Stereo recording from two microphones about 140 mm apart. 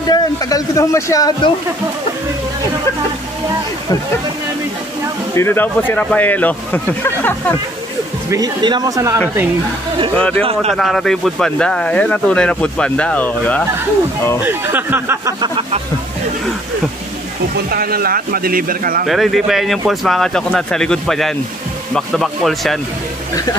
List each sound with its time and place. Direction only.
0.1 s speech: 25° left (ahead or behind)
5.3 s speech: 15° left (ahead or behind)
8.3 s speech: 30° right (ahead or behind)
10.1 s speech: 10° left (ahead or behind)
10.4 s speech: 45° right (ahead or behind)
10.7 s speech: 5° left (ahead or behind)
14.4 s speech: 15° right (ahead or behind)
17.6 s a man's voice: 90° right
19.0 s speech: centre (ahead or behind)